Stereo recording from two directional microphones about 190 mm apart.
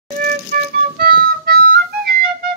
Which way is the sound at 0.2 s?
50° right (ahead or behind).